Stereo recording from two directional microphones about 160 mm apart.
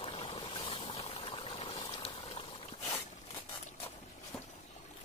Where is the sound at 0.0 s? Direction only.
35° left (ahead or behind).